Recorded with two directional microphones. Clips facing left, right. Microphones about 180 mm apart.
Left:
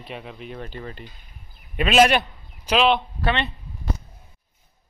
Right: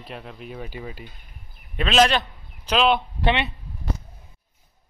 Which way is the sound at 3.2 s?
20° right (ahead or behind).